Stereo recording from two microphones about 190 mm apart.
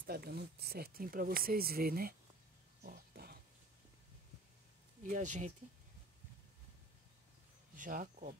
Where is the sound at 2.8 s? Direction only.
55° right (ahead or behind).